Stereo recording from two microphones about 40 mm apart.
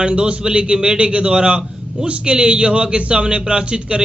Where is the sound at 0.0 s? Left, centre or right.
Right.